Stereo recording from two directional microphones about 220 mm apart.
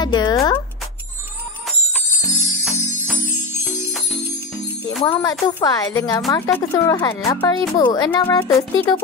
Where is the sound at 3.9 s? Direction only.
5° right (ahead or behind).